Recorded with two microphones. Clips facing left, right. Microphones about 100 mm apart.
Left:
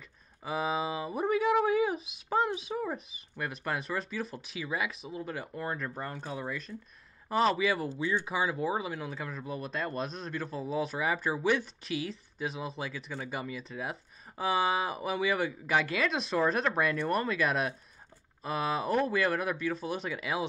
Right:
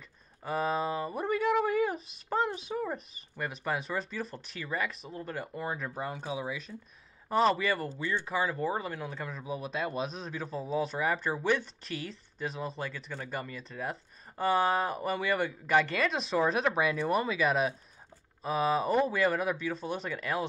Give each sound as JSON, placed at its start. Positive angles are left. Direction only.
{"t": 0.4, "sound": "speech", "side_deg": 0}